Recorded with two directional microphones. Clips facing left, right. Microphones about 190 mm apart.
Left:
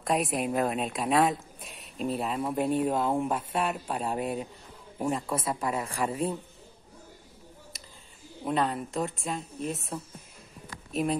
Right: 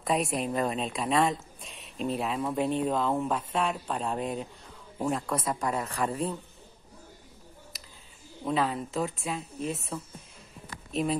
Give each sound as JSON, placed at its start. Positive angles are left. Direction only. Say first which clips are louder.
{"t": 0.0, "sound": "a woman's voice", "louder": "left 1 dB", "side_deg": 0}
{"t": 5.4, "sound": "speech", "louder": "even", "side_deg": 25}
{"t": 5.7, "sound": "speech", "louder": "even", "side_deg": 10}
{"t": 8.5, "sound": "a woman's voice", "louder": "even", "side_deg": 5}